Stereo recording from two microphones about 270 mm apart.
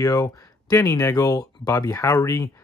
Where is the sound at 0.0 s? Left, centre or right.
Centre.